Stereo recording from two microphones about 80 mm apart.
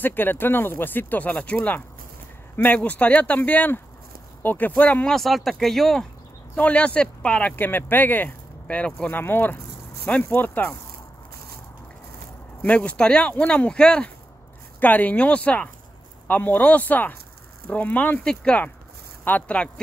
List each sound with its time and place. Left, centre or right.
0.0 s speech: left
5.1 s speech: centre
6.5 s speech: centre
7.5 s speech: left
9.2 s speech: left
12.6 s speech: centre
18.2 s speech: centre